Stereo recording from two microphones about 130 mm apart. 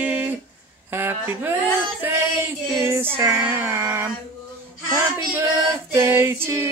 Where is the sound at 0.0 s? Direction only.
10° right (ahead or behind).